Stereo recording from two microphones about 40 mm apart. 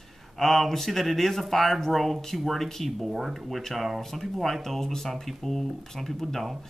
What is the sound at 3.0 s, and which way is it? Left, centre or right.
Speech, centre.